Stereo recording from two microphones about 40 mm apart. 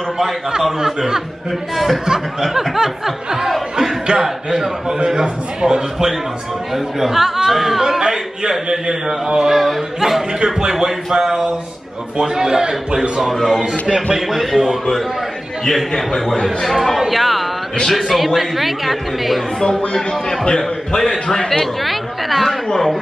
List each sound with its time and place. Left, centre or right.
0.7 s a man's voice: centre
6.7 s a man's voice: centre
13.2 s a woman's voice: centre
19.8 s a man's voice: centre
21.0 s a man's voice: centre